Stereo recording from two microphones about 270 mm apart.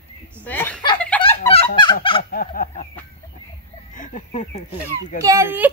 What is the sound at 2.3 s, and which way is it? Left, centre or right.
Fowl, left.